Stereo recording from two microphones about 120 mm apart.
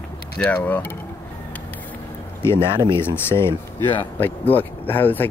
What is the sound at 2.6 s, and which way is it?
Speech, 45° right (ahead or behind).